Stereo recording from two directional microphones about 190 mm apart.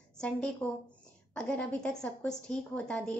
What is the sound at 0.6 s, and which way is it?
A woman's voice, 10° left (ahead or behind).